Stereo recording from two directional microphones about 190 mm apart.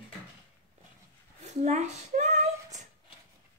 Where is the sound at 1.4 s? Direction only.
40° right (ahead or behind).